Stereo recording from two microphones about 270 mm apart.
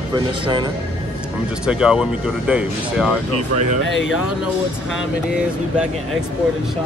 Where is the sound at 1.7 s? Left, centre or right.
Centre.